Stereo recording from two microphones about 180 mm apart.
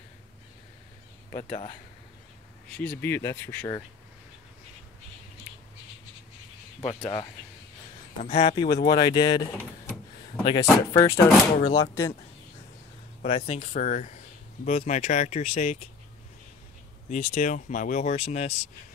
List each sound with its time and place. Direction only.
1.3 s speech: 35° left (ahead or behind)
2.7 s speech: 10° left (ahead or behind)
6.8 s speech: 35° left (ahead or behind)
10.4 s speech: 25° left (ahead or behind)
13.2 s speech: 40° left (ahead or behind)
17.1 s speech: 45° left (ahead or behind)